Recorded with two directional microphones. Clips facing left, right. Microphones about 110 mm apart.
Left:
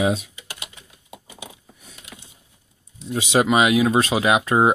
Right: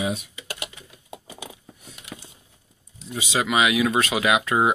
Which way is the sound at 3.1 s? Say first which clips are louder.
Left 7 dB; 65° left (ahead or behind).